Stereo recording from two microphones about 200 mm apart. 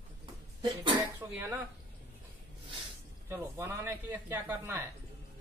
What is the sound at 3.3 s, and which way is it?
Speech, 15° right (ahead or behind).